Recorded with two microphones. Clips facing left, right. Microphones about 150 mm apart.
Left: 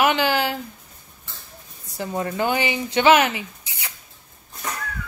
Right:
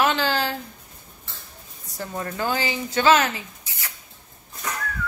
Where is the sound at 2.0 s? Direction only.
15° left (ahead or behind).